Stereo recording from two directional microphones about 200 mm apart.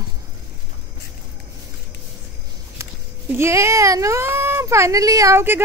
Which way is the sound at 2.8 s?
15° right (ahead or behind).